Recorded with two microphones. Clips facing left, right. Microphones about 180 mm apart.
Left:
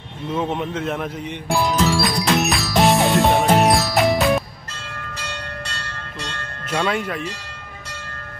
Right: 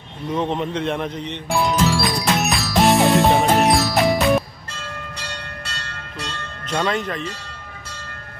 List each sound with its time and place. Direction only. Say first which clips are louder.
0.3 s music: right 1 dB; 5° left (ahead or behind)
6.7 s speech: even; 10° left (ahead or behind)